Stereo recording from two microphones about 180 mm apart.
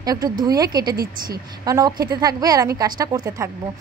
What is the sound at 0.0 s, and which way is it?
A woman's voice, 20° right (ahead or behind).